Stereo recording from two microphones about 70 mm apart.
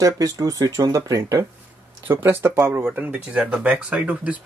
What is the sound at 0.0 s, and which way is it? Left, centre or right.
Speech, right.